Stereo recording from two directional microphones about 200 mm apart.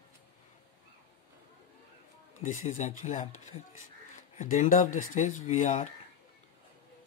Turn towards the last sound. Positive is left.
turn(degrees=35)  # may be behind; listen again after turning